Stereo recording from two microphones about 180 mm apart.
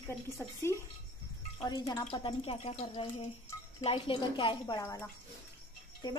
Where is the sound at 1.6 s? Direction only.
25° left (ahead or behind).